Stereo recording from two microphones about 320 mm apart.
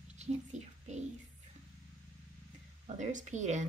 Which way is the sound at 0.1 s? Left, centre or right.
Right.